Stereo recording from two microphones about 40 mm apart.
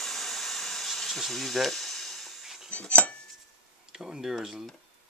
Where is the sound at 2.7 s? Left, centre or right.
Left.